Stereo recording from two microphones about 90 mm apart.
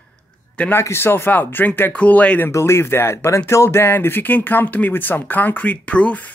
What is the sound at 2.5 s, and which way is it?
Speech, 30° left (ahead or behind).